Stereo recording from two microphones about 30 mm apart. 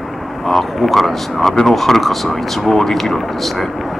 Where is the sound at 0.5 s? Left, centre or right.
Centre.